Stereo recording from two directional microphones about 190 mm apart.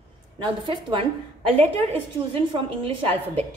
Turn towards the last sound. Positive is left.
turn(degrees=-30)  # may be behind; listen again after turning